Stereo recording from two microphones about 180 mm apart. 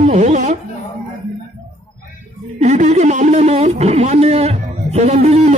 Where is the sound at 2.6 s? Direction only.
40° right (ahead or behind).